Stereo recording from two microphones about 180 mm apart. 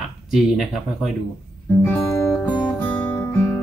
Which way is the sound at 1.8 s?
15° left (ahead or behind).